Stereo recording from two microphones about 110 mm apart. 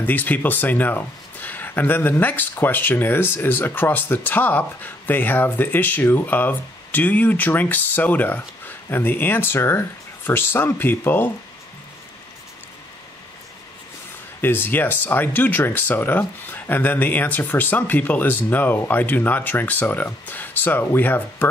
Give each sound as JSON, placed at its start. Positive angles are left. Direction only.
{"t": 0.0, "sound": "speech", "side_deg": 15}
{"t": 14.4, "sound": "speech", "side_deg": 20}